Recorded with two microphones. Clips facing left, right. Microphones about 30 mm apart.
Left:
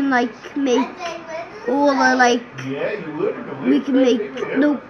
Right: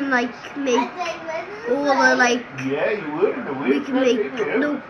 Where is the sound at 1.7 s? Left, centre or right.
Centre.